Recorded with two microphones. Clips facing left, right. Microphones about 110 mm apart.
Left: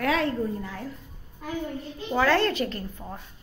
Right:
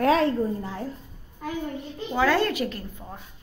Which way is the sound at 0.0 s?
30° right (ahead or behind).